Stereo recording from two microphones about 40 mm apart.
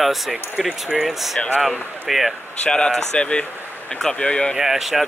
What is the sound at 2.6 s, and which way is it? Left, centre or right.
Speech, left.